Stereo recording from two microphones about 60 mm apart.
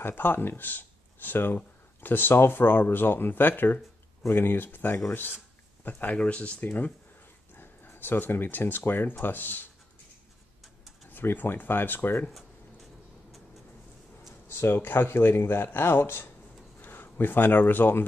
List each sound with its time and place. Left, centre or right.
0.0 s speech: left
7.5 s speech: left
11.1 s speech: left
14.5 s speech: left